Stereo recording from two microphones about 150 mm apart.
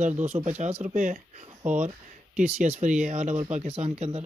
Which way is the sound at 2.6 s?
55° right (ahead or behind).